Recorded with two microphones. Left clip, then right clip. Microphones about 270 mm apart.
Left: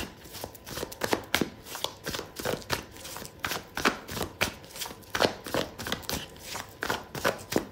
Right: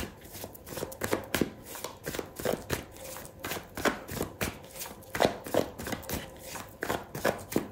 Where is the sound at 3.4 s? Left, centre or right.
Centre.